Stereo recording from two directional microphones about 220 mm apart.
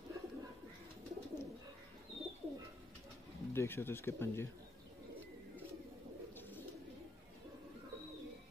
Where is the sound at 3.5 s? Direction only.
10° left (ahead or behind).